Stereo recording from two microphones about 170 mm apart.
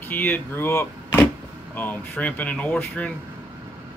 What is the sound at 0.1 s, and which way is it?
Speech, 10° left (ahead or behind).